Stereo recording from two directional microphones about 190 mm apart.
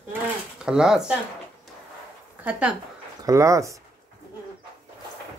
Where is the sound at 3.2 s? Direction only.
15° right (ahead or behind).